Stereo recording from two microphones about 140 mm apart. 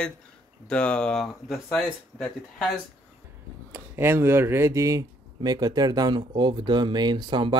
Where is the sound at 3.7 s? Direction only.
15° right (ahead or behind).